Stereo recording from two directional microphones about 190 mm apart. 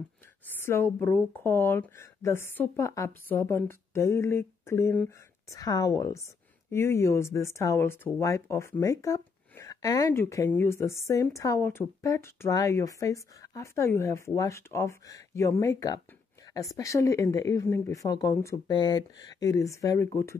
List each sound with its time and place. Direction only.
0.5 s speech: 10° left (ahead or behind)